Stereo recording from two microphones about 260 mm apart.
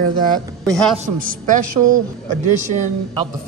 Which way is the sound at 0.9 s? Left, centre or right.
Right.